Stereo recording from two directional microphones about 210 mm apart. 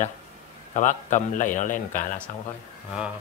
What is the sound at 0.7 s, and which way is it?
A man's voice, 35° left (ahead or behind).